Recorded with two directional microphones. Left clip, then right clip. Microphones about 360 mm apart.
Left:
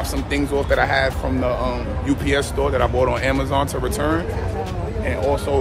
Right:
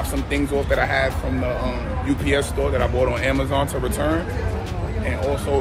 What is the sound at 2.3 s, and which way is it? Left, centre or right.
Speech, centre.